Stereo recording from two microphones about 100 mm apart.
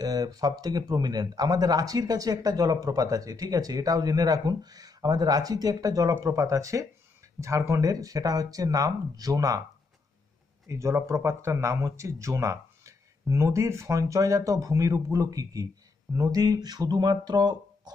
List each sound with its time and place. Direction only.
0.0 s speech: 40° right (ahead or behind)
10.7 s speech: 30° right (ahead or behind); by 17.9 s 45° right (ahead or behind)